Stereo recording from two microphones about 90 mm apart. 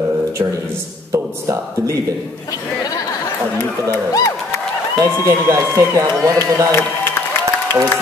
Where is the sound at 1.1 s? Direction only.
35° right (ahead or behind).